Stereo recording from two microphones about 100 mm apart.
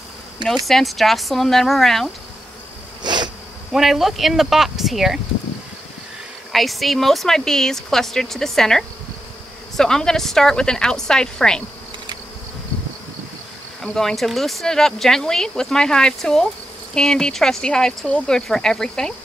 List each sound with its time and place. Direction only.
0.7 s speech: centre (ahead or behind)
3.0 s insect: 45° right (ahead or behind)
3.7 s speech: centre (ahead or behind)
6.5 s a woman's voice: centre (ahead or behind)
13.8 s speech: 5° left (ahead or behind)